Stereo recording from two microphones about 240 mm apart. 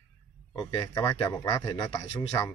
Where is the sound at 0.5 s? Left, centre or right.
Centre.